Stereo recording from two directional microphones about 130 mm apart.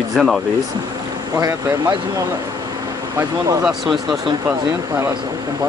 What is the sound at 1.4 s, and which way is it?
Speech, 30° right (ahead or behind).